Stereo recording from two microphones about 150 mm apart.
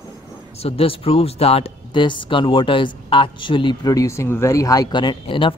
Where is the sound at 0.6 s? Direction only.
40° left (ahead or behind).